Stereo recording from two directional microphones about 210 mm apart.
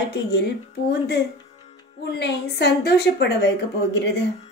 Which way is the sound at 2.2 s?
55° left (ahead or behind).